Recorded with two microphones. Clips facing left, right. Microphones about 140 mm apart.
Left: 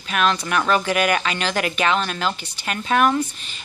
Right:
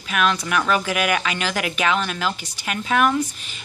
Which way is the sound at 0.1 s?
5° right (ahead or behind).